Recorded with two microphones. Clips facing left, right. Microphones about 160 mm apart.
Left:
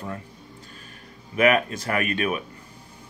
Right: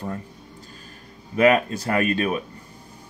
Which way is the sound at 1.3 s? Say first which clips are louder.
Right 2 dB; 35° right (ahead or behind).